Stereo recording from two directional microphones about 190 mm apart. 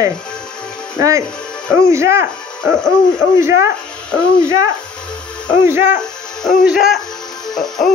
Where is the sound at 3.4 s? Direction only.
15° right (ahead or behind).